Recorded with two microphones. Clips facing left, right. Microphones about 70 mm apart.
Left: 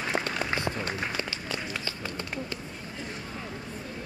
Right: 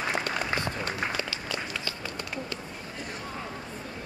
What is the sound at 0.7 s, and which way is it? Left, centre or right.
Run, left.